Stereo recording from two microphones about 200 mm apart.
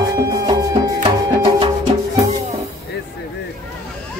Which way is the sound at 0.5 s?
20° right (ahead or behind).